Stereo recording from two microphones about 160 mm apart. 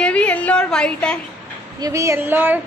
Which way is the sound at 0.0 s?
5° left (ahead or behind).